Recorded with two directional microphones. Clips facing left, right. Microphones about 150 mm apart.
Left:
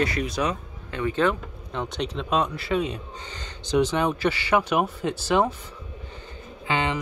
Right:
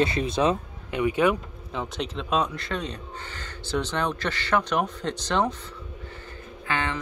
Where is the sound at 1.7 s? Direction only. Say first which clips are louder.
Left 2 dB; centre (ahead or behind).